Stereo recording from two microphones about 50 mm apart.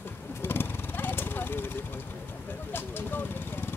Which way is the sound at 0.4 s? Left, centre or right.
Left.